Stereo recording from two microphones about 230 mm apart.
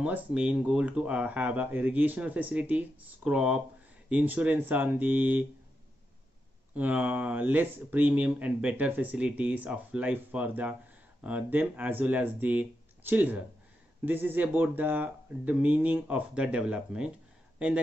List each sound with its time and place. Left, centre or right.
0.0 s speech: centre
6.7 s speech: centre